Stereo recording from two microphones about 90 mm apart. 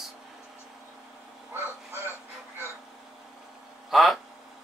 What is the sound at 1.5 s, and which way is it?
Crow, 25° right (ahead or behind).